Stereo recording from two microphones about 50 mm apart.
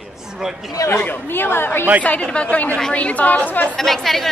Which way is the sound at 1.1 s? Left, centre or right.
Left.